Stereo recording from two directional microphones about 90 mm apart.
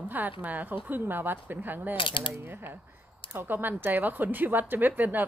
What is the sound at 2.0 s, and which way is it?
Mechanisms, 70° left (ahead or behind).